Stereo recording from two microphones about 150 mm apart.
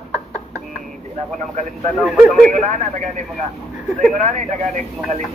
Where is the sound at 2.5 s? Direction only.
55° right (ahead or behind).